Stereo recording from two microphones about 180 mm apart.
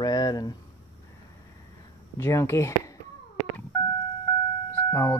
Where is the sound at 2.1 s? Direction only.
15° left (ahead or behind).